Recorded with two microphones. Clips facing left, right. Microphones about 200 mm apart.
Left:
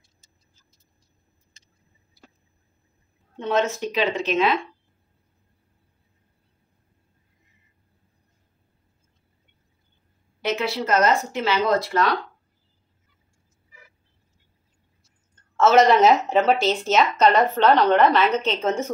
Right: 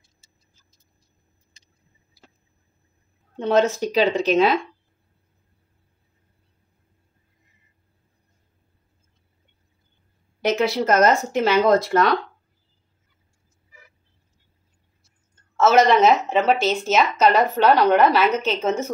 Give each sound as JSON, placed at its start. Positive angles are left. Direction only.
{"t": 3.3, "sound": "speech", "side_deg": -35}
{"t": 10.4, "sound": "speech", "side_deg": -45}
{"t": 15.5, "sound": "speech", "side_deg": -5}